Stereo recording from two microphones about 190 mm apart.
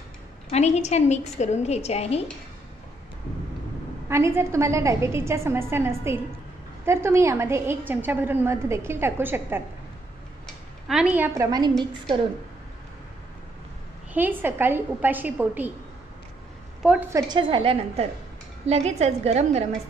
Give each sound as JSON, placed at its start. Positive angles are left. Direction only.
{"t": 0.5, "sound": "a woman's voice", "side_deg": 35}
{"t": 4.1, "sound": "a woman's voice", "side_deg": -15}
{"t": 10.4, "sound": "a sound", "side_deg": -5}
{"t": 14.1, "sound": "a woman's voice", "side_deg": -10}
{"t": 17.1, "sound": "a woman's voice", "side_deg": -25}